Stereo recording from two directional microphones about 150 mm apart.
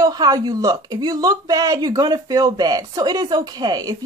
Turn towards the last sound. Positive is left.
turn(degrees=-25)  # may be behind; listen again after turning